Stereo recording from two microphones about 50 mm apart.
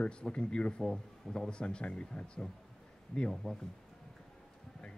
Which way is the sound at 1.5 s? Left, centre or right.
Left.